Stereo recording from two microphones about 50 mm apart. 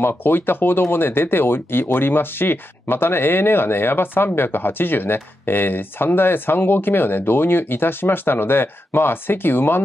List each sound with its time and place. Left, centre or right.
0.0 s speech: left